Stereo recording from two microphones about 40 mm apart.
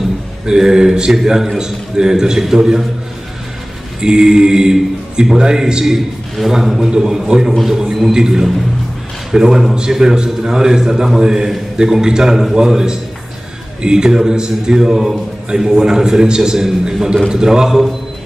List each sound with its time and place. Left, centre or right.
0.5 s a man's voice: centre
4.0 s a man's voice: centre
5.9 s a man's voice: centre